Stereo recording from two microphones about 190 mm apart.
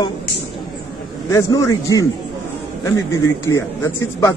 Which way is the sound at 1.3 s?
15° left (ahead or behind).